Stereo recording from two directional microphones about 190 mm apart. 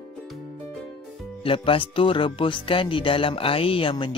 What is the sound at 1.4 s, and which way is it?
Speech, 30° left (ahead or behind).